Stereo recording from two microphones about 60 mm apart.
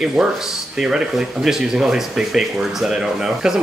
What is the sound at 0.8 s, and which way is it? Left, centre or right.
Speech, centre.